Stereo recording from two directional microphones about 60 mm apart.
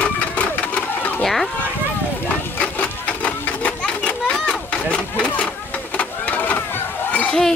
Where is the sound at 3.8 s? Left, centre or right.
Centre.